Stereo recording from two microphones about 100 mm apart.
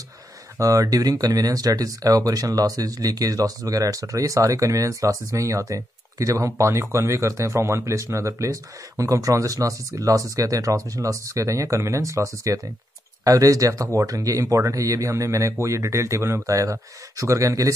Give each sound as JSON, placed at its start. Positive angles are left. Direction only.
{"t": 0.6, "sound": "speech", "side_deg": -35}